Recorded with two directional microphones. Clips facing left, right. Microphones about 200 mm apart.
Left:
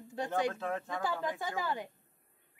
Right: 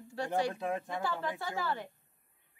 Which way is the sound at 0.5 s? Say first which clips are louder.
Right 1 dB; 15° right (ahead or behind).